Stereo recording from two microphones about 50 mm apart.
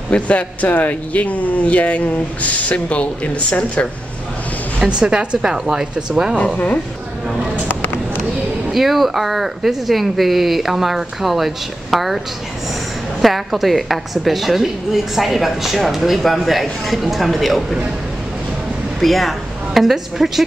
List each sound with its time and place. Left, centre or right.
0.1 s speech: left
4.7 s speech: right
6.3 s a woman's voice: centre
8.7 s a woman's voice: centre
13.2 s a woman's voice: centre
18.9 s speech: centre